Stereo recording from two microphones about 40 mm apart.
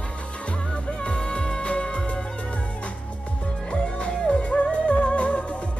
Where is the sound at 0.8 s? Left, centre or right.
Left.